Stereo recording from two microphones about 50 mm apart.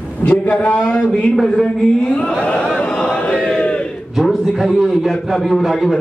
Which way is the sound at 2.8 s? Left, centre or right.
Centre.